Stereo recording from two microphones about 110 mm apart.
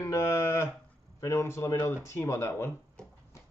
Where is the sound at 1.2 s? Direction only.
25° left (ahead or behind).